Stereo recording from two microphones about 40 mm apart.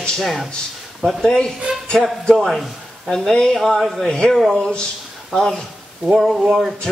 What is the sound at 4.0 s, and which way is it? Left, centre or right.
Speech, centre.